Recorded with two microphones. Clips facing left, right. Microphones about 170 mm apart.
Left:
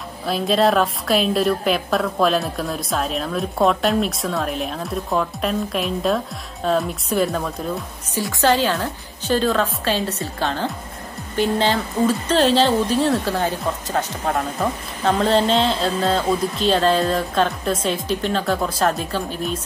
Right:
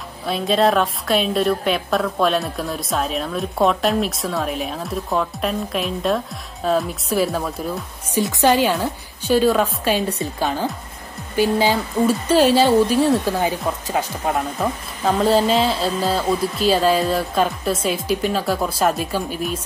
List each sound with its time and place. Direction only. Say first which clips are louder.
0.3 s a woman's voice: even; centre (ahead or behind)
8.2 s speech: right 2 dB; 20° right (ahead or behind)